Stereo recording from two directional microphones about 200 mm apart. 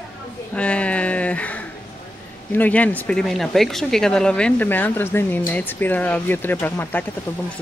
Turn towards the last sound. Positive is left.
turn(degrees=10)  # may be behind; listen again after turning